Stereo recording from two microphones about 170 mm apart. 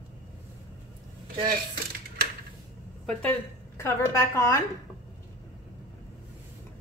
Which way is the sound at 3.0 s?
10° left (ahead or behind).